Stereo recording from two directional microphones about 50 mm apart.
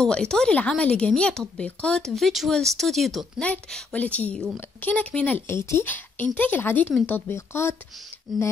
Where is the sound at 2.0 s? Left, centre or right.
Centre.